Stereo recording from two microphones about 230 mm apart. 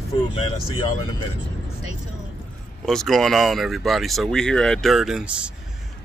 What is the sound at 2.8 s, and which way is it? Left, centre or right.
Speech, centre.